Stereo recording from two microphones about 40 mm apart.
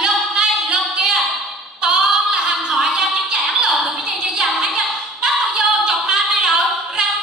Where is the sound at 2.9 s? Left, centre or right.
Right.